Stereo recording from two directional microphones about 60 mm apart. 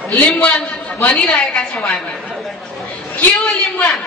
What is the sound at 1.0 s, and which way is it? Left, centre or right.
A woman's voice, centre.